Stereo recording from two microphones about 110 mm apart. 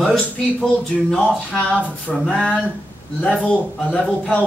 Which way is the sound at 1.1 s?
10° left (ahead or behind).